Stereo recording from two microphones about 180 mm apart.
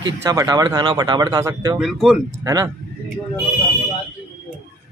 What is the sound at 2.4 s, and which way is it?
Speech, 20° right (ahead or behind).